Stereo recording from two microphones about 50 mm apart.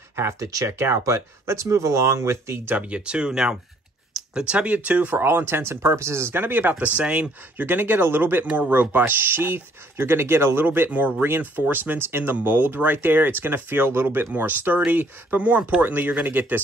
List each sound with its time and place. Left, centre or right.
0.1 s speech: right
1.0 s speech: right
2.6 s speech: right
2.9 s speech: right
5.2 s speech: right
6.4 s speech: right
10.9 s speech: right
14.3 s speech: right